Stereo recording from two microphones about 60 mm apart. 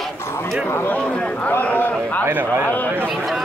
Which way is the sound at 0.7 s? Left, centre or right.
Left.